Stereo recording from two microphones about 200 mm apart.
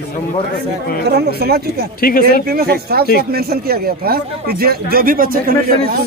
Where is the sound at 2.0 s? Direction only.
45° left (ahead or behind).